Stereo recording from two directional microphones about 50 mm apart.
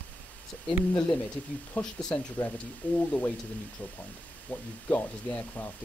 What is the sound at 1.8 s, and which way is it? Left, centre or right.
Speech, centre.